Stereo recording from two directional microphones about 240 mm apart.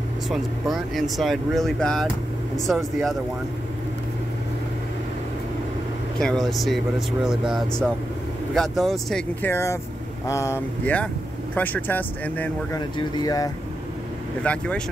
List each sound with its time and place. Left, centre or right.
0.3 s speech: centre
6.1 s speech: centre
14.4 s speech: centre